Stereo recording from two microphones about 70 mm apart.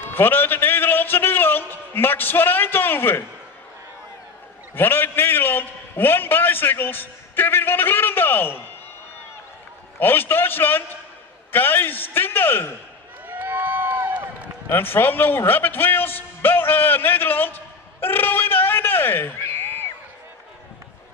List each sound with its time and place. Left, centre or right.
0.1 s music: left
4.7 s a man's voice: left
9.9 s a man's voice: left
13.3 s run: right
14.7 s a man's voice: left
18.0 s a sound: left